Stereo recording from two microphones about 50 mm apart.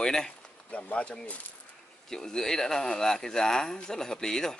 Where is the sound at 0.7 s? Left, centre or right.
Left.